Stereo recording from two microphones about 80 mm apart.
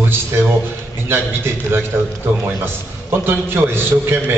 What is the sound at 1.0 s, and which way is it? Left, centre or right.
A man's voice, right.